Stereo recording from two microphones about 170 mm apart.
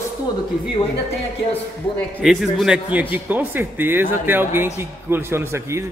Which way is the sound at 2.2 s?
Centre (ahead or behind).